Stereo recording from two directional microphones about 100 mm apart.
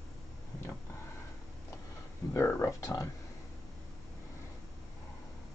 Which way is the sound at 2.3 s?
30° left (ahead or behind).